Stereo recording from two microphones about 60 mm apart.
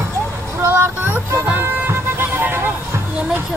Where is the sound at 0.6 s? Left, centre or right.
Right.